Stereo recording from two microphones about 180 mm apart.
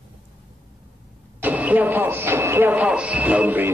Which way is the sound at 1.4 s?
10° right (ahead or behind).